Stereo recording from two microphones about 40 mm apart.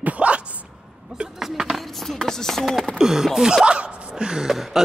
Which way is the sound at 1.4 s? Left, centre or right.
Centre.